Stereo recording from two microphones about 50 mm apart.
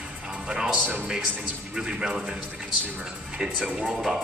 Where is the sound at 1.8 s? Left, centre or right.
Centre.